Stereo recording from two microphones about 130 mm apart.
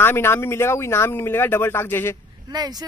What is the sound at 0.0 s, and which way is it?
Speech, 15° left (ahead or behind).